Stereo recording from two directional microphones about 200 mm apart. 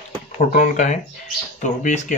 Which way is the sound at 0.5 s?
40° left (ahead or behind).